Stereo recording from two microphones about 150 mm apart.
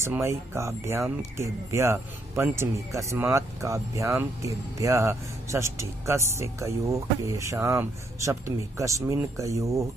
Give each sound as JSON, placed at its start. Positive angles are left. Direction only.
{"t": 0.0, "sound": "speech", "side_deg": -20}